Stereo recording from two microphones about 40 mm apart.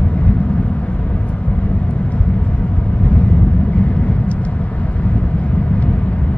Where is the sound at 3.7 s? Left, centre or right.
Left.